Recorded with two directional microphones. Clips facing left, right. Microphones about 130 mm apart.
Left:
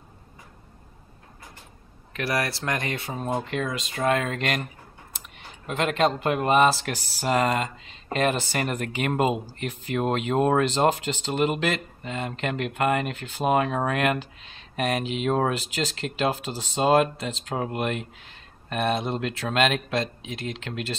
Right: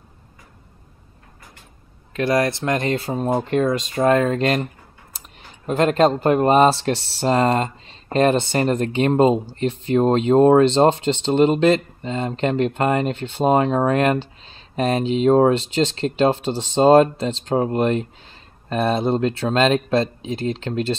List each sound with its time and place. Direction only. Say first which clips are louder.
2.1 s speech: right 8 dB; 25° right (ahead or behind)
3.3 s speech: right 11 dB; 40° right (ahead or behind)
5.7 s speech: right 7 dB; 35° right (ahead or behind)